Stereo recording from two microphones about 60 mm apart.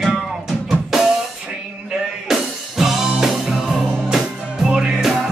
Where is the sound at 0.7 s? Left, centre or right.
Centre.